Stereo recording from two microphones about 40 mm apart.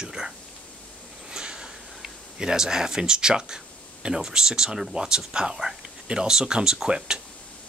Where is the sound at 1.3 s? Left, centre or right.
Right.